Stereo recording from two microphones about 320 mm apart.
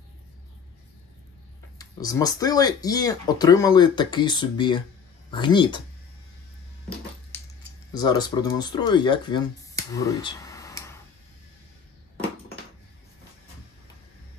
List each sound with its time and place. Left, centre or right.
1.8 s speech: centre
7.9 s speech: centre